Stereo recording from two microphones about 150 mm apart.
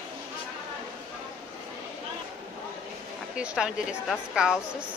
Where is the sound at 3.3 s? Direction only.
5° right (ahead or behind).